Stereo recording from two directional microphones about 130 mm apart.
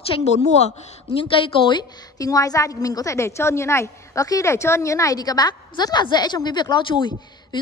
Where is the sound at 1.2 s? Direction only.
35° left (ahead or behind).